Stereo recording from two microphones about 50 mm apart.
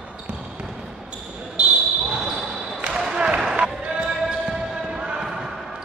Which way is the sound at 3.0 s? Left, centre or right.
Centre.